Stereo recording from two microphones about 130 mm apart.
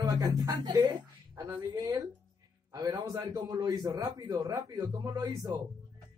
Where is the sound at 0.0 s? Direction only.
25° right (ahead or behind).